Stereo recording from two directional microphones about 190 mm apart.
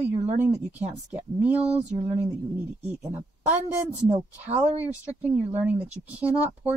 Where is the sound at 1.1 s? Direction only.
10° right (ahead or behind).